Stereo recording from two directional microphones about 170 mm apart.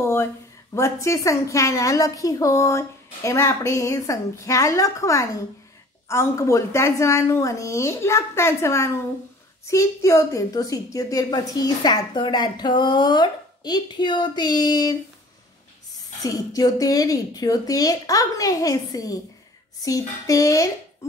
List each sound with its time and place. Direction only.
0.7 s a woman's voice: 15° left (ahead or behind)
16.2 s a woman's voice: 20° left (ahead or behind)